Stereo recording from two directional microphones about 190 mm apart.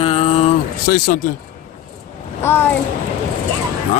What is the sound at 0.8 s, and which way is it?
Speech, 50° left (ahead or behind).